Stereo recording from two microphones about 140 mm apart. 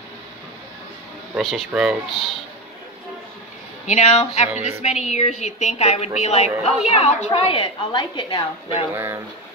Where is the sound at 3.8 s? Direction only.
55° left (ahead or behind); by 8.5 s 35° left (ahead or behind).